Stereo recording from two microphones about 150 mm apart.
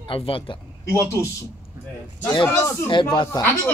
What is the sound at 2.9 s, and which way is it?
Speech, 30° left (ahead or behind).